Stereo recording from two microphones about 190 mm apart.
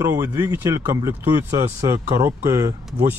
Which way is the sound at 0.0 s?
15° right (ahead or behind).